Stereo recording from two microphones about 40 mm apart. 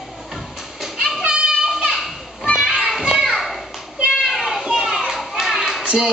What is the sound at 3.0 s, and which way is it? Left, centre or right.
Children playing, centre.